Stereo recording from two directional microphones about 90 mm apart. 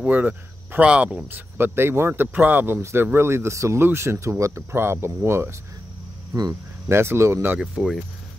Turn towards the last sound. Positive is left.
turn(degrees=-5)  # may be behind; listen again after turning